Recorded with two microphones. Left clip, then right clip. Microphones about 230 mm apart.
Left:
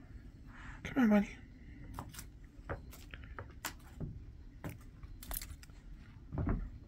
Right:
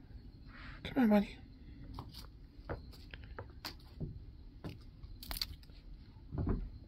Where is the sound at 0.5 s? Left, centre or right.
Right.